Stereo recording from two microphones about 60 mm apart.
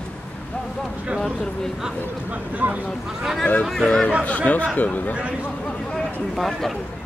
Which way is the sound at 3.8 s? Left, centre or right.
Centre.